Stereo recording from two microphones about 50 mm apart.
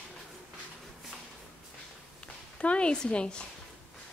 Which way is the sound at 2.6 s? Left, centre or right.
Left.